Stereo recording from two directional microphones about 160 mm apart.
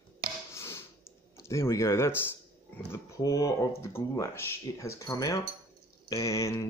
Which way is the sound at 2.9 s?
20° left (ahead or behind).